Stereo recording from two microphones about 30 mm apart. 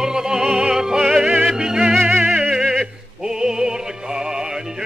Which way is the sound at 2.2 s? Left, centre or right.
Right.